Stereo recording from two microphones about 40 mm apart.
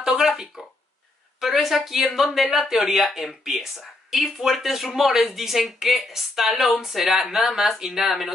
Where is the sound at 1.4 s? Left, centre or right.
Centre.